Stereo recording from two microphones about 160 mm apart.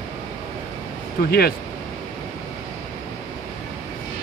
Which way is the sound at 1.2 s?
75° left (ahead or behind).